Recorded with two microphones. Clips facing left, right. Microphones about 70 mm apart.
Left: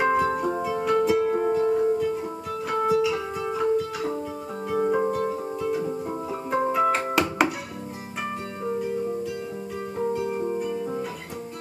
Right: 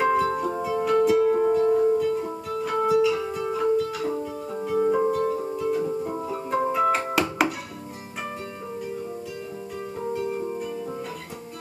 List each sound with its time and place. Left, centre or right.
0.0 s music: centre
7.1 s music: centre
10.1 s music: centre
10.6 s music: centre